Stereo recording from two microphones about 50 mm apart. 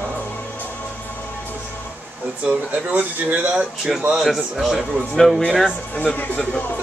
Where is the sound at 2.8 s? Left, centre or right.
Right.